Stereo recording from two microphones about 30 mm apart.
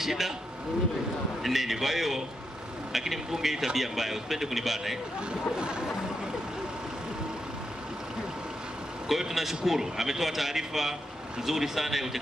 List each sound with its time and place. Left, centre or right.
0.0 s speech: centre
1.4 s a man's voice: centre
5.6 s speech: right
9.1 s a man's voice: centre